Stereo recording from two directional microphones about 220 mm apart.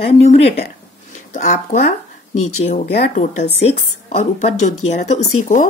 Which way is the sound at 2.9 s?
35° left (ahead or behind).